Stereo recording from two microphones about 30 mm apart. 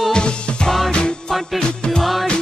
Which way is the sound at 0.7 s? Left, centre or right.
Centre.